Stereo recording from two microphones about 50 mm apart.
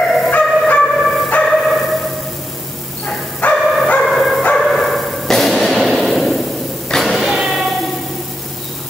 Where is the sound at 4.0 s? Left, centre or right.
Centre.